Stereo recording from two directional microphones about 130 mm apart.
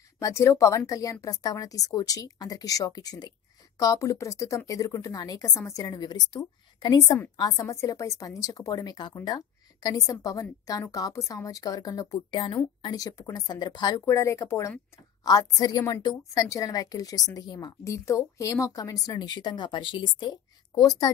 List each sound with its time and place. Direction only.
0.2 s a woman's voice: 20° left (ahead or behind)